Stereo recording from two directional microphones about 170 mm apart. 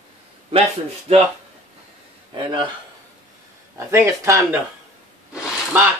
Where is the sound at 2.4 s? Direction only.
30° right (ahead or behind).